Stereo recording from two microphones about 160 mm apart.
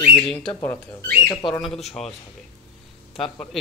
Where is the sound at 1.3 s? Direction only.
30° left (ahead or behind).